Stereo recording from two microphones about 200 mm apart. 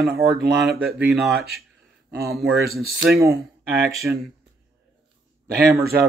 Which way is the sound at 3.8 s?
50° right (ahead or behind).